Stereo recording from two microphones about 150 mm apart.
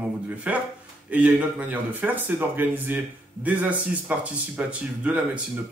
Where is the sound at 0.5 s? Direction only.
10° right (ahead or behind).